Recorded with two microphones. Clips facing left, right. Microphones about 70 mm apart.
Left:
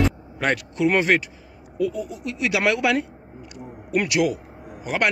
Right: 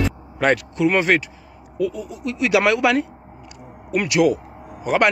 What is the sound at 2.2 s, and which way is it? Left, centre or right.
A man's voice, centre.